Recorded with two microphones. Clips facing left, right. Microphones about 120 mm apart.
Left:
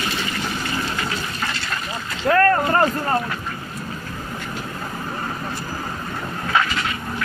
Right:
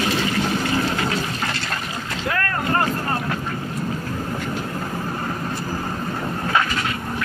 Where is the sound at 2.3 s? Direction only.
40° left (ahead or behind).